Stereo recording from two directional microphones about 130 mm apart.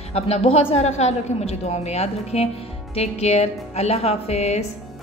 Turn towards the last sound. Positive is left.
turn(degrees=55)  # may be behind; listen again after turning